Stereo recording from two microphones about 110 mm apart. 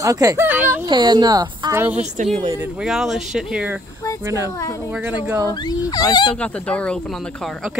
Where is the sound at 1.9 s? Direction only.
90° right.